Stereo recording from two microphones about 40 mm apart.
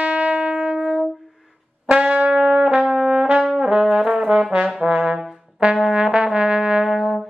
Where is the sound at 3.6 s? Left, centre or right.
Right.